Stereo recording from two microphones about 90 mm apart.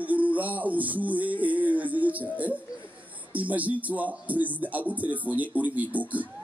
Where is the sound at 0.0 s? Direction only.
15° right (ahead or behind).